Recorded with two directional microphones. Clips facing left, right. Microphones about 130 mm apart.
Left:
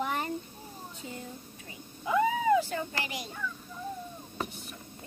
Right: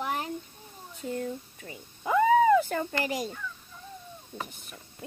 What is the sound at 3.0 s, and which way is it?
Speech, 40° right (ahead or behind).